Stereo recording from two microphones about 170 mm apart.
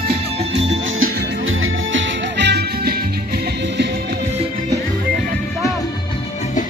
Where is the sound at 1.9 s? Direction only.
90° right; by 4.2 s 70° right (ahead or behind).